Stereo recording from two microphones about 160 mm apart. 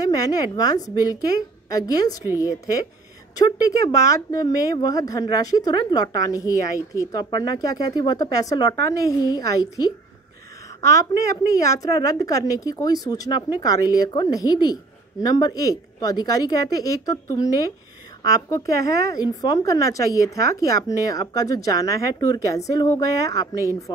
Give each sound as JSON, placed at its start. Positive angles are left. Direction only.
{"t": 0.0, "sound": "a woman's voice", "side_deg": 25}
{"t": 18.8, "sound": "speech", "side_deg": -75}
{"t": 19.4, "sound": "a woman's voice", "side_deg": 20}